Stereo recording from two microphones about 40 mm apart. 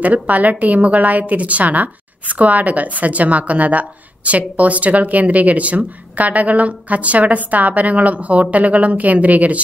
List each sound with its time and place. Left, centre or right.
0.0 s a woman's voice: right